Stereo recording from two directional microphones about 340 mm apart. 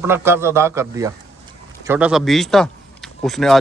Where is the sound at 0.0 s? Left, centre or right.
Centre.